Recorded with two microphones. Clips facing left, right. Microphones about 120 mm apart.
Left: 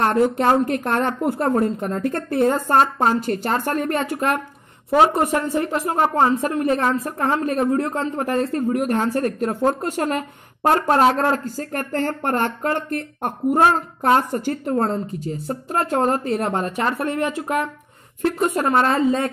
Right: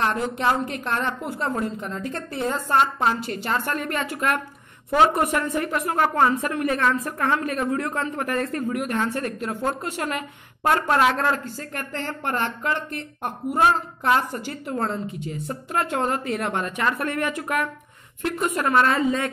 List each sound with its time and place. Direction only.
0.0 s a woman's voice: 50° left (ahead or behind); by 19.3 s 30° left (ahead or behind)